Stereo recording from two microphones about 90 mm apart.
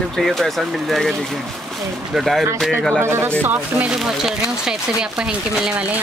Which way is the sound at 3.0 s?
25° right (ahead or behind).